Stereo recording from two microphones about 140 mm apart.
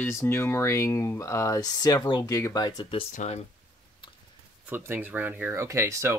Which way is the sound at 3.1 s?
60° left (ahead or behind).